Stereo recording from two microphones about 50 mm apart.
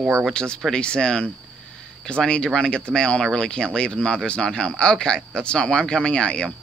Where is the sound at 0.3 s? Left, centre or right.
Centre.